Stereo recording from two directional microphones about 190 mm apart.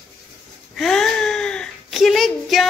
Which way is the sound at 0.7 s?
Centre (ahead or behind).